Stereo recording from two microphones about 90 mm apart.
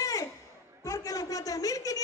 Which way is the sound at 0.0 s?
40° left (ahead or behind).